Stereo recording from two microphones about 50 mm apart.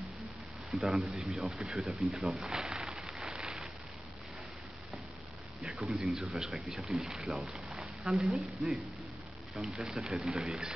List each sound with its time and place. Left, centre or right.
0.7 s speech: centre
1.7 s speech: centre
2.0 s speech: centre
2.5 s a sound: centre
5.6 s speech: centre
9.8 s speech: centre